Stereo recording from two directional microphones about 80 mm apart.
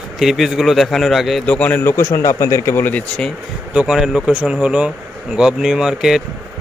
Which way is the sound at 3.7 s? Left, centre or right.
Centre.